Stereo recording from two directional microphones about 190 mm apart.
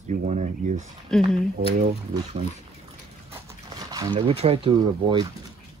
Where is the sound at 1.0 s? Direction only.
5° left (ahead or behind).